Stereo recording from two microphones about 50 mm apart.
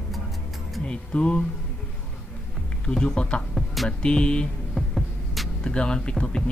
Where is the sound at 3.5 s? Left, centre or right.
Centre.